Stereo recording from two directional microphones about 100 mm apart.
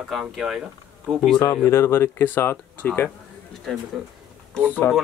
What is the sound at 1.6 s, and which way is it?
Speech, 25° left (ahead or behind).